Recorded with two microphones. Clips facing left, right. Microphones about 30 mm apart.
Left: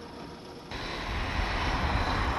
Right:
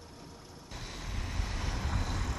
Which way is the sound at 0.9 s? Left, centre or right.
Left.